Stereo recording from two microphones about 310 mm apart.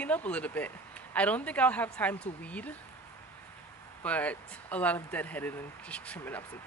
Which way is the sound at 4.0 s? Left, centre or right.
Centre.